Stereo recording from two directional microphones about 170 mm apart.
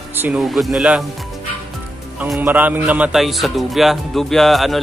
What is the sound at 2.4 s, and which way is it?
Speech, 10° right (ahead or behind).